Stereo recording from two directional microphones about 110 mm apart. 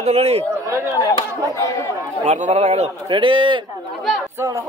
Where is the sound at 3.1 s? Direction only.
50° right (ahead or behind).